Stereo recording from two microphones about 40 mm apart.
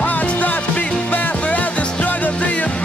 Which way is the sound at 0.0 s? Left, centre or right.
Left.